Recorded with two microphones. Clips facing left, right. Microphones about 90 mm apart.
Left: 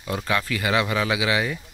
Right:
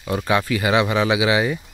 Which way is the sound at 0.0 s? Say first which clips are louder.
Right 5 dB; 15° right (ahead or behind).